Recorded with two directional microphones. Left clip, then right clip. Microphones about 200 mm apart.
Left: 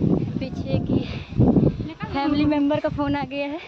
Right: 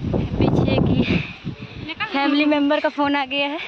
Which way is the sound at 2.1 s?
25° right (ahead or behind).